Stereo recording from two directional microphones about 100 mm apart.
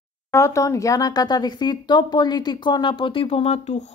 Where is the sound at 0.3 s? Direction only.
30° left (ahead or behind).